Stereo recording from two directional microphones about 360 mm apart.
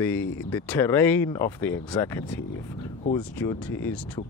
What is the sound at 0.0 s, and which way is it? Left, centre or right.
Speech, centre.